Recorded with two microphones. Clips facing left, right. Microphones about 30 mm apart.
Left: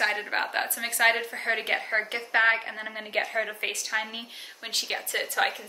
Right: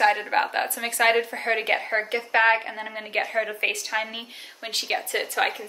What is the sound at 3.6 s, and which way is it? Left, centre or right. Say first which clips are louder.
A woman's voice: right 4 dB; centre.